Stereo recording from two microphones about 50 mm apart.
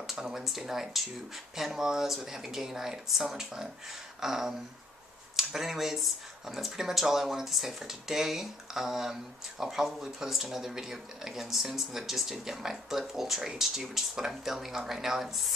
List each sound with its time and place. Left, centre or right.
0.0 s speech: centre